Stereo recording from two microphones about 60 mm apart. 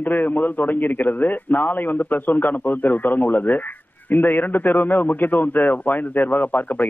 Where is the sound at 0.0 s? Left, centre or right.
Left.